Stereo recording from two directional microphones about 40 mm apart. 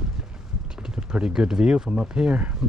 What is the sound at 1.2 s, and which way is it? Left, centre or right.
Speech, centre.